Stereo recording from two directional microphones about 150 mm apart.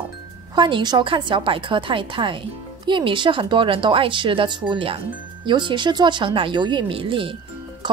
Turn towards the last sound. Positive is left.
turn(degrees=-35)  # may be behind; listen again after turning